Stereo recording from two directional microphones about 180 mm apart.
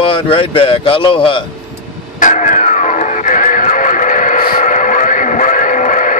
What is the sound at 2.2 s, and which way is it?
Music, 45° left (ahead or behind).